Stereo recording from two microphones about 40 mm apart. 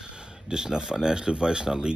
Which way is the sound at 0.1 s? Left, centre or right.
Centre.